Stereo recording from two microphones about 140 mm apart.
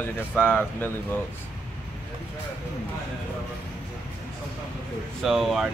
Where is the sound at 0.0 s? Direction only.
10° left (ahead or behind).